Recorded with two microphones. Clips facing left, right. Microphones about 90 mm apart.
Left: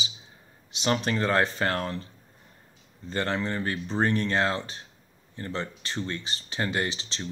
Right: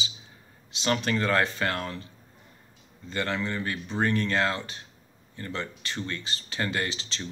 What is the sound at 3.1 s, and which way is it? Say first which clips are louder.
Speech: left 1 dB; 30° left (ahead or behind).